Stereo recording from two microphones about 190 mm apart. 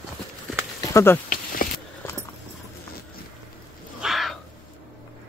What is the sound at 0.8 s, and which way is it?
Speech, 15° left (ahead or behind).